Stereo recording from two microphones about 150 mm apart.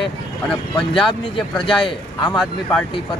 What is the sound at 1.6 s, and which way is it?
Speech, 35° left (ahead or behind).